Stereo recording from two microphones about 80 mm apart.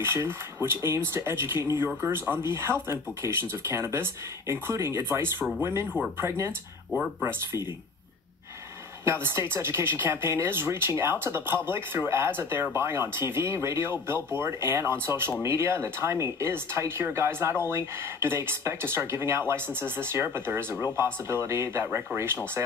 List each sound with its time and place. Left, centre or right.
0.0 s speech: right
9.0 s speech: right